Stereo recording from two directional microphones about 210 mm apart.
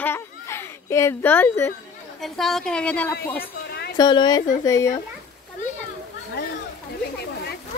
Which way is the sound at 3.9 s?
20° left (ahead or behind).